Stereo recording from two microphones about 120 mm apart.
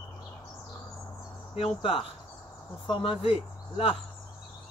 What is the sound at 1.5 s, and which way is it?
Speech, 50° left (ahead or behind).